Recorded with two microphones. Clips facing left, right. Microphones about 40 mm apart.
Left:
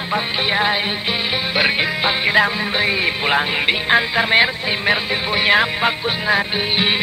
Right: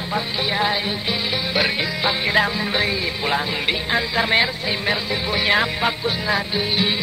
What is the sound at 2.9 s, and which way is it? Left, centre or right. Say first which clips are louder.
Music: left 4 dB; left.